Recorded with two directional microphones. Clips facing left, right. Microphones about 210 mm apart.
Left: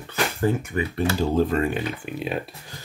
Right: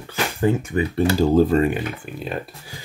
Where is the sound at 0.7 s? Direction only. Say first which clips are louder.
Right 4 dB; 30° right (ahead or behind).